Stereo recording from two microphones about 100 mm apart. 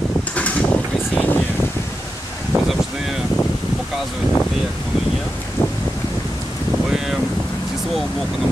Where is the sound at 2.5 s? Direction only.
20° right (ahead or behind).